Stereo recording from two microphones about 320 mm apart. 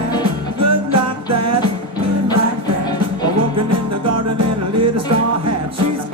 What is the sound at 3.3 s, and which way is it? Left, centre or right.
Music, right.